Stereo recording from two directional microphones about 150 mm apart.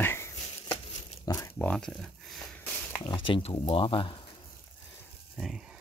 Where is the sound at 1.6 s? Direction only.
5° left (ahead or behind).